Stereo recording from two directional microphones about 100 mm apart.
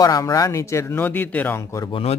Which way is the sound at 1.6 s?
30° left (ahead or behind).